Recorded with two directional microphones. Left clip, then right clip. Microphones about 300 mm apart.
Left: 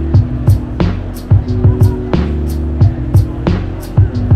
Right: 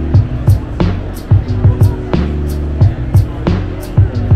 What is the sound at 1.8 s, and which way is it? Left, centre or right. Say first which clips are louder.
Music: left 1 dB; centre.